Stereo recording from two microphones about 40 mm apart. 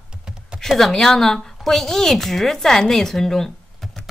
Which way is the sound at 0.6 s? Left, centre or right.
Centre.